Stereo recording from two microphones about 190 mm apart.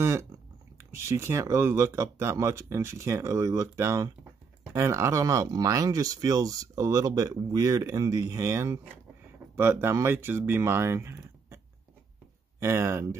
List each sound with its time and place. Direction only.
0.0 s speech: 15° right (ahead or behind)